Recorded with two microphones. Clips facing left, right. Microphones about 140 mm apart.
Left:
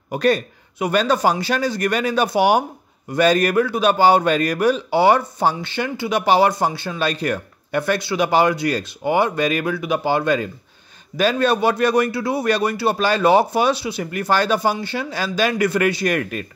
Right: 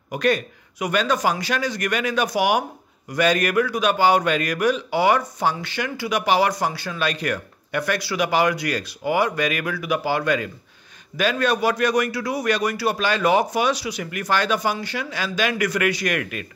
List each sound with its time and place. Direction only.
0.1 s a man's voice: 35° left (ahead or behind)